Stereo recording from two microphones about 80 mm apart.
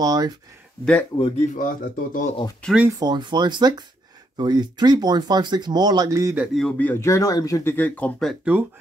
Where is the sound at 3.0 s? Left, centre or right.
Right.